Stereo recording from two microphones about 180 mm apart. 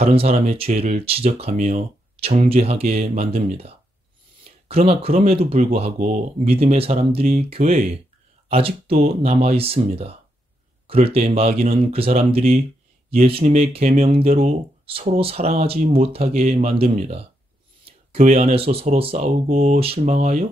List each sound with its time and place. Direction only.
0.0 s speech: 35° right (ahead or behind)
16.4 s speech: 45° right (ahead or behind)
16.7 s speech: 35° right (ahead or behind)